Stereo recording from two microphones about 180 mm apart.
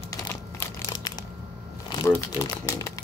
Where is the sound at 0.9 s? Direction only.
20° left (ahead or behind).